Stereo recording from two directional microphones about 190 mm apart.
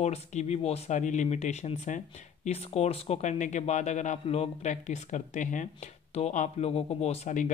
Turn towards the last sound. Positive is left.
turn(degrees=40)  # may be behind; listen again after turning